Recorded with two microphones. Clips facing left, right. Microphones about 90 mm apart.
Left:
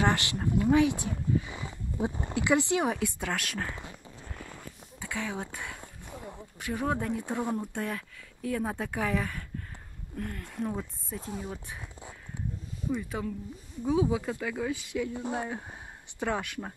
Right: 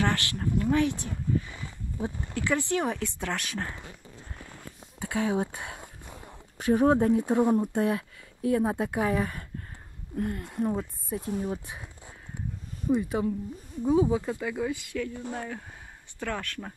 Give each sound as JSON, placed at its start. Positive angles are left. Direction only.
{"t": 0.0, "sound": "speech", "side_deg": 20}
{"t": 5.0, "sound": "a sound", "side_deg": -40}
{"t": 5.3, "sound": "speech", "side_deg": -20}
{"t": 6.6, "sound": "speech", "side_deg": -35}
{"t": 7.2, "sound": "speech", "side_deg": -15}
{"t": 9.1, "sound": "speech", "side_deg": -35}
{"t": 13.8, "sound": "speech", "side_deg": 0}
{"t": 14.7, "sound": "speech", "side_deg": 15}